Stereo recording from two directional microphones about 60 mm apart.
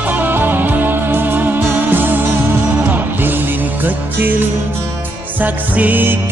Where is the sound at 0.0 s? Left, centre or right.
Right.